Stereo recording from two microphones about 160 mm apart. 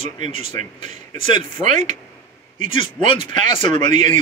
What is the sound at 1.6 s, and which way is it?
Speech, 45° right (ahead or behind).